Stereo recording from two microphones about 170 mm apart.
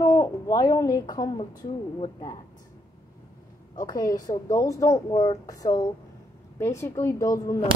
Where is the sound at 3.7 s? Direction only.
20° left (ahead or behind).